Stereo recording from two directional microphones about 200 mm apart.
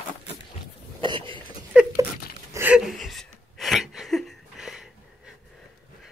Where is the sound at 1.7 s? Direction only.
5° right (ahead or behind).